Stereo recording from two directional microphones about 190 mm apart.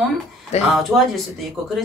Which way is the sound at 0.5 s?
35° left (ahead or behind).